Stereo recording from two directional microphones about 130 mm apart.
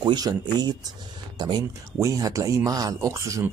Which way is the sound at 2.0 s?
25° right (ahead or behind).